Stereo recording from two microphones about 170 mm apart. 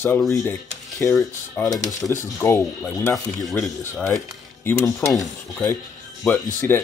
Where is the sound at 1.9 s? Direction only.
20° left (ahead or behind).